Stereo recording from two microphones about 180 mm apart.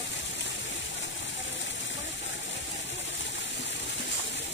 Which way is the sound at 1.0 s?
90° left.